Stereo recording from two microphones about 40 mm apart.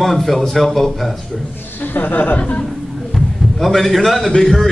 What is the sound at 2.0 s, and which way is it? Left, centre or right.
Speech, left.